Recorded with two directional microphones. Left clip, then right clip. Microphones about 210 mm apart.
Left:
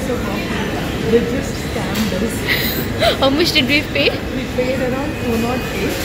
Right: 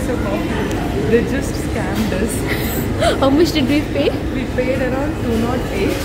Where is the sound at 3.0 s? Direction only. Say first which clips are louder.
Even; 20° right (ahead or behind).